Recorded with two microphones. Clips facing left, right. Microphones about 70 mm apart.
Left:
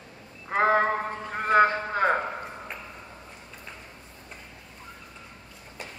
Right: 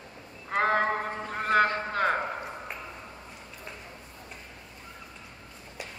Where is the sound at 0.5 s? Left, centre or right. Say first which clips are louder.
Left 3 dB; centre.